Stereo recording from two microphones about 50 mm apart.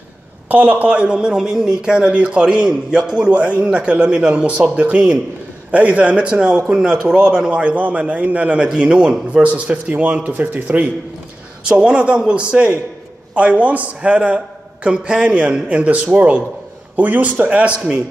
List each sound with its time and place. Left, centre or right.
0.5 s a man's voice: right
6.7 s a man's voice: centre; by 10.9 s right
11.6 s a man's voice: centre